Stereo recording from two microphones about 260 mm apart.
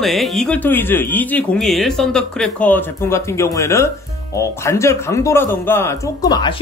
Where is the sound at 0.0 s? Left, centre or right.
Centre.